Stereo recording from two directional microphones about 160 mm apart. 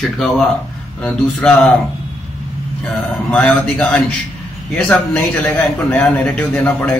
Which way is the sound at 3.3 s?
10° left (ahead or behind).